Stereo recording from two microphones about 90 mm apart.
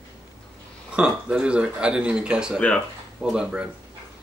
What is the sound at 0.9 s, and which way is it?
Speech, 10° right (ahead or behind).